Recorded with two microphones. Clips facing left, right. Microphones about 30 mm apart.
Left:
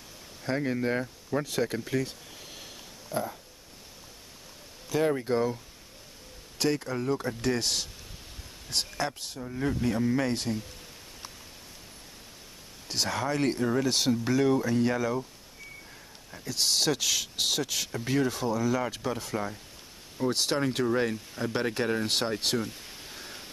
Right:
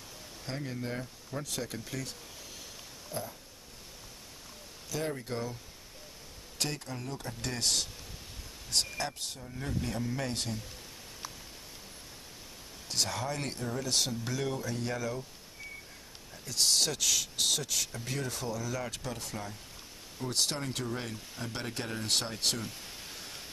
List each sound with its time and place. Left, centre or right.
0.6 s speech: left
1.4 s speech: left
3.1 s speech: left
5.2 s speech: left
6.7 s speech: centre
7.4 s speech: centre
9.5 s speech: left
12.8 s speech: centre
13.2 s speech: left
16.4 s speech: centre
19.3 s speech: left
20.2 s speech: centre
20.8 s speech: left
22.0 s a sound: centre